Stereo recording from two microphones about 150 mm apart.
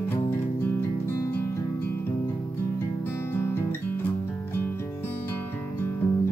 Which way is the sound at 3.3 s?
15° left (ahead or behind).